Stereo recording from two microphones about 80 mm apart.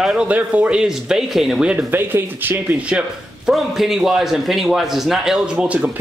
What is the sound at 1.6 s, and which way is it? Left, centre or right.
Speech, right.